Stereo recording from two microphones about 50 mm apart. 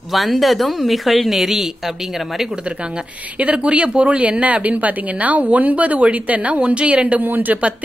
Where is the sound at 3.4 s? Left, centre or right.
Right.